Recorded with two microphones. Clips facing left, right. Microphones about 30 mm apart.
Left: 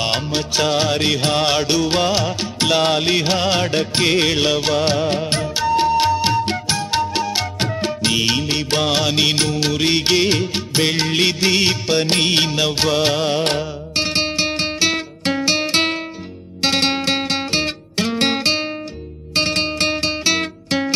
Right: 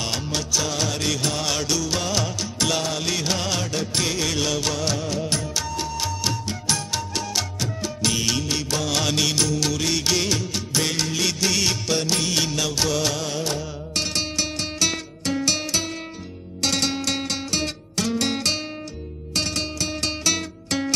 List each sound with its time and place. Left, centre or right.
0.0 s music: left
20.0 s music: left